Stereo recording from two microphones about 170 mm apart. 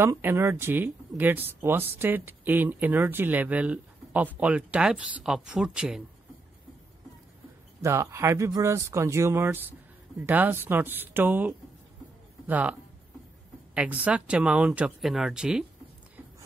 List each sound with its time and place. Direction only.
0.0 s speech: 15° right (ahead or behind)
7.8 s speech: 15° right (ahead or behind)
14.0 s speech: 5° right (ahead or behind)